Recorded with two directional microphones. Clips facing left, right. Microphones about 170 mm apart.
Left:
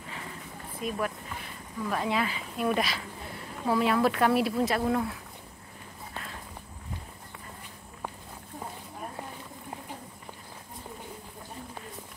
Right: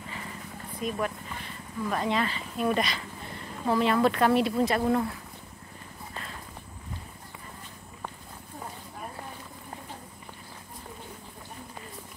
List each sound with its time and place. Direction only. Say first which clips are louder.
0.7 s speech: right 1 dB; 5° left (ahead or behind)